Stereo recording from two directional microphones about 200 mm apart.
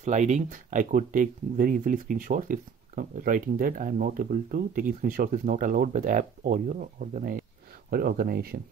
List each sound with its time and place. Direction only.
0.0 s speech: 35° right (ahead or behind)